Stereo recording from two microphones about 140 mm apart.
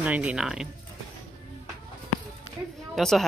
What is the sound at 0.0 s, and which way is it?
Speech, 10° right (ahead or behind).